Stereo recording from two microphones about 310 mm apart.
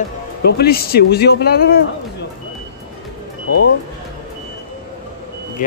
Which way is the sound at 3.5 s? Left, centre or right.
Left.